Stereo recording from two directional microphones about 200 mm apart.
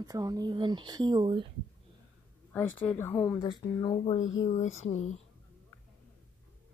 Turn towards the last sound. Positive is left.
turn(degrees=35)  # may be behind; listen again after turning